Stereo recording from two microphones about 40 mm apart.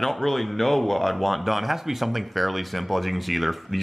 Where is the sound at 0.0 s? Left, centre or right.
Centre.